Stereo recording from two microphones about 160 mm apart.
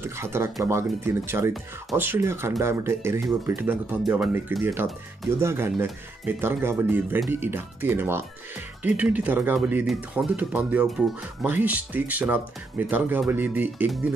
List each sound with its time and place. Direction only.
0.0 s speech: 15° right (ahead or behind)